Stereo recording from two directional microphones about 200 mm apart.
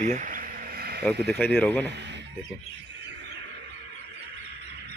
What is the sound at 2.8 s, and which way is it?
Wild animals, 65° right (ahead or behind).